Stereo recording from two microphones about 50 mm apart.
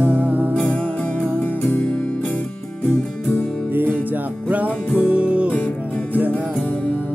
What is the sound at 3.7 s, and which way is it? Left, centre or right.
Music, right.